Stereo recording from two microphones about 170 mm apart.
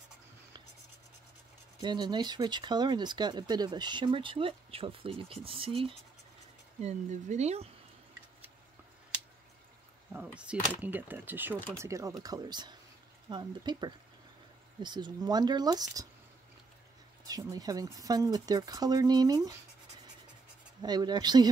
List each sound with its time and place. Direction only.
1.8 s speech: 25° right (ahead or behind)
6.8 s speech: 45° right (ahead or behind)
10.1 s speech: 5° right (ahead or behind)
17.3 s speech: 20° right (ahead or behind)
20.8 s speech: 25° right (ahead or behind)